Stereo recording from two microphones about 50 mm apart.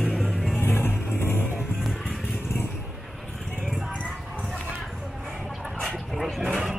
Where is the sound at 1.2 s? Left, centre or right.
Left.